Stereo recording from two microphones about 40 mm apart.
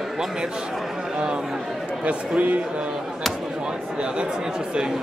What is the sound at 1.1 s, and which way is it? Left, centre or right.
Speech, right.